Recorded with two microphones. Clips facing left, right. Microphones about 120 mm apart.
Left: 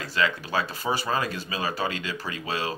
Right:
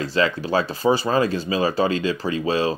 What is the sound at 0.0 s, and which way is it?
Speech, 30° right (ahead or behind).